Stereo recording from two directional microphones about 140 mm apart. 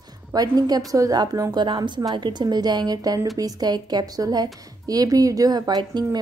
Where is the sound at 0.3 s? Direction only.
25° right (ahead or behind).